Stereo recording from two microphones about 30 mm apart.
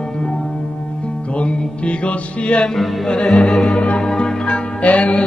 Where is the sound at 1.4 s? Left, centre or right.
Left.